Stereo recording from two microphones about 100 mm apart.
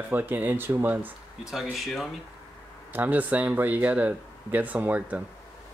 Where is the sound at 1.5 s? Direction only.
5° right (ahead or behind).